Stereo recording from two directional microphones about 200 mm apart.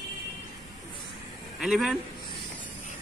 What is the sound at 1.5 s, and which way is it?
Speech, centre (ahead or behind).